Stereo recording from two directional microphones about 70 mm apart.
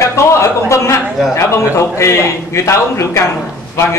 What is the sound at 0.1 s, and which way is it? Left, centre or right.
A man's voice, left.